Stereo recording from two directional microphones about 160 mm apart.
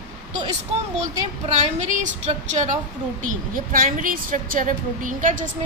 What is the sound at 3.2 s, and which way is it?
A woman's voice, 55° right (ahead or behind).